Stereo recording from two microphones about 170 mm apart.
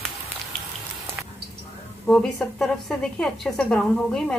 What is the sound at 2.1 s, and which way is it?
A woman's voice, 5° left (ahead or behind).